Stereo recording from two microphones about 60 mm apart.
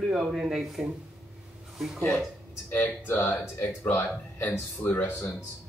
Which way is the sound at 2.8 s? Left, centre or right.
Left.